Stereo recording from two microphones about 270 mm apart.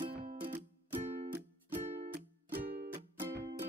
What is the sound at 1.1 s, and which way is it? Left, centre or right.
Music, right.